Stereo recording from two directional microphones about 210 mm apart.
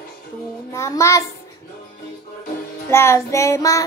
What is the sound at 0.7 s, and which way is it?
Child singing, 15° left (ahead or behind).